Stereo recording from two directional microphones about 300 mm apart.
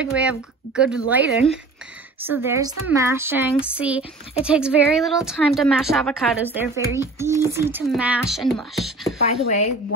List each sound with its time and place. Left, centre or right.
0.0 s a woman's voice: centre
9.2 s speech: left